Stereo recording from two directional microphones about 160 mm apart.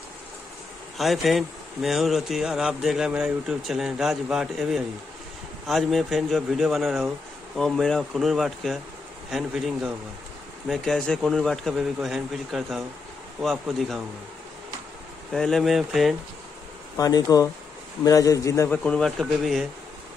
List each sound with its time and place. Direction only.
0.9 s speech: centre (ahead or behind)
15.3 s speech: centre (ahead or behind)
16.9 s speech: 20° left (ahead or behind)
18.9 s speech: 5° left (ahead or behind)